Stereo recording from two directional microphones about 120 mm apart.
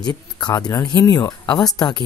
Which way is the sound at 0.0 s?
35° left (ahead or behind).